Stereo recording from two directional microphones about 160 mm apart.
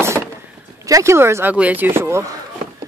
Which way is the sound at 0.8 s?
20° right (ahead or behind).